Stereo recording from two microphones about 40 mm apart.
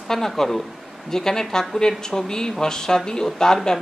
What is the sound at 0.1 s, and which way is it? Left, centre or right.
Speech, centre.